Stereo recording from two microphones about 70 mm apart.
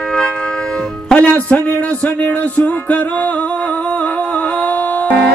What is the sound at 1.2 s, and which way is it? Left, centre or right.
Music, left.